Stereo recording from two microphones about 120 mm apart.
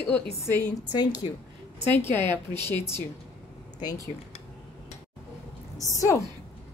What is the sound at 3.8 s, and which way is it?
Speech, 35° left (ahead or behind).